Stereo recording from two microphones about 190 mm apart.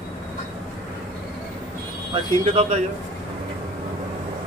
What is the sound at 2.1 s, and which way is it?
Speech, 30° right (ahead or behind).